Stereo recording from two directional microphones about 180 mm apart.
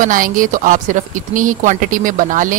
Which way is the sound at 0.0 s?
50° right (ahead or behind).